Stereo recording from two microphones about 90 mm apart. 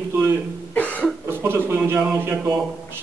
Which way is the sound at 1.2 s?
30° right (ahead or behind).